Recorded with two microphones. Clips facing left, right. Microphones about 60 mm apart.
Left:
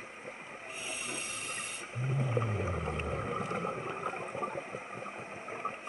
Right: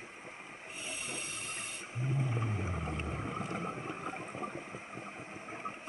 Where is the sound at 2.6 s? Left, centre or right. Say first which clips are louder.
Left 3 dB; left.